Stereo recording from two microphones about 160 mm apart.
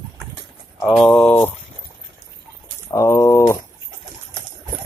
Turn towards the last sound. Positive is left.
turn(degrees=15)  # may be behind; listen again after turning